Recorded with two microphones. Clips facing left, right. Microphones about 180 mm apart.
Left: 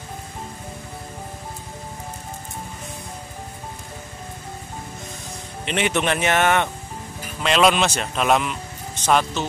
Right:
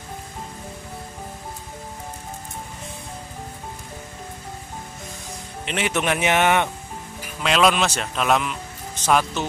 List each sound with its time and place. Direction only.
5.7 s speech: 5° right (ahead or behind)
7.4 s speech: centre (ahead or behind)
9.0 s speech: 10° right (ahead or behind)